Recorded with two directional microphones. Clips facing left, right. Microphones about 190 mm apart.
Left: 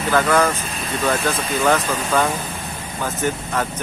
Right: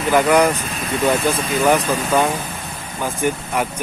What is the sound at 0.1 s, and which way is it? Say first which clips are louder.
Speech: right 3 dB; 15° right (ahead or behind).